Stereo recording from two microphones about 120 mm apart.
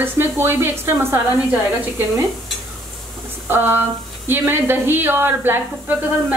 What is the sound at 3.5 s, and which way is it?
Speech, 20° right (ahead or behind).